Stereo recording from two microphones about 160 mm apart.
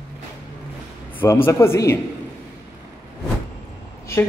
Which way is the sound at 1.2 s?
15° left (ahead or behind).